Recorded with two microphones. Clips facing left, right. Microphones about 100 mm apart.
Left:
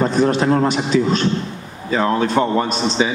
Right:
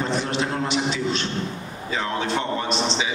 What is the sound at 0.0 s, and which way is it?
A man's voice, 45° left (ahead or behind).